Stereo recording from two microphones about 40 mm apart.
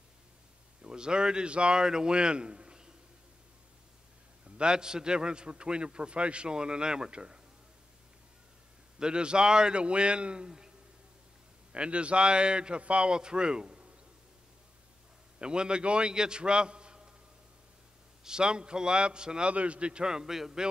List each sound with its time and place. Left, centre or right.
0.8 s speech: right
4.6 s a man's voice: centre
9.0 s a man's voice: right
11.7 s a man's voice: right
15.3 s a man's voice: right
18.2 s a man's voice: right
19.5 s a man's voice: right; by 20.6 s centre